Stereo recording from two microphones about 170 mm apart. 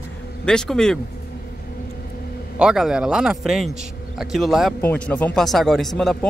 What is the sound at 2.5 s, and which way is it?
Speech, 5° right (ahead or behind).